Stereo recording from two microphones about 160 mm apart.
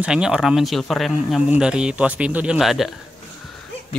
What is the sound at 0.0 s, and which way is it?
Speech, 5° right (ahead or behind).